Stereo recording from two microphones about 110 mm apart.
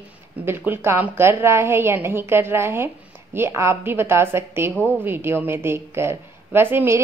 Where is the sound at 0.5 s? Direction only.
20° right (ahead or behind).